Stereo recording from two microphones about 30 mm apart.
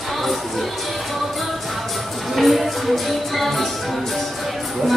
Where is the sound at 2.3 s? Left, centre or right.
Centre.